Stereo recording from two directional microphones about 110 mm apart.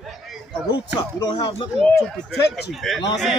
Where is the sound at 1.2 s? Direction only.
40° left (ahead or behind).